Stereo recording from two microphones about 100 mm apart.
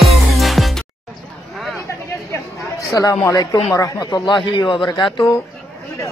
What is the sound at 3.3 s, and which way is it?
Speech, 40° left (ahead or behind).